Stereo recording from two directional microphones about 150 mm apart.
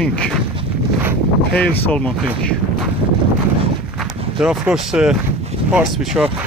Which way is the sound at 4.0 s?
5° right (ahead or behind).